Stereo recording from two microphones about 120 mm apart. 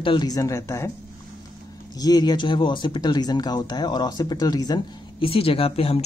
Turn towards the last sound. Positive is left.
turn(degrees=55)  # may be behind; listen again after turning